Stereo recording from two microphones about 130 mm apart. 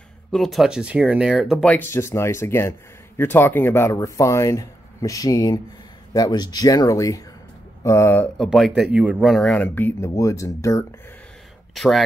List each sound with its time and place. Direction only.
0.3 s speech: centre (ahead or behind)
1.6 s speech: 15° left (ahead or behind)
8.4 s speech: centre (ahead or behind)
9.4 s speech: 10° left (ahead or behind)
11.7 s speech: centre (ahead or behind)